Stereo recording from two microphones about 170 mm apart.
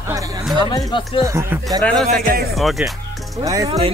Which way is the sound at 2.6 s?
Centre (ahead or behind).